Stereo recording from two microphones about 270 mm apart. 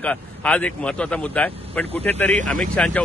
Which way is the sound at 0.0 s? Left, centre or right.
Centre.